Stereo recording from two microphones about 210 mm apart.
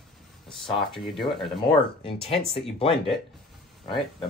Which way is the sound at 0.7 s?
Centre (ahead or behind).